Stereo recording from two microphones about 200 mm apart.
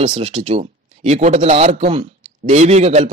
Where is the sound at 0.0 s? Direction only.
25° right (ahead or behind).